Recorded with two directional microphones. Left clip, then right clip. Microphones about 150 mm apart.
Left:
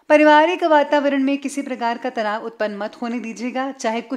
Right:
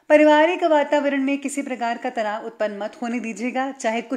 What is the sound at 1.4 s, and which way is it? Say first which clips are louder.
A woman's voice: left 2 dB; 20° left (ahead or behind).